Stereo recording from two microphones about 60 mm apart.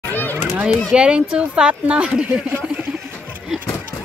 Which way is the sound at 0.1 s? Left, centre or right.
Left.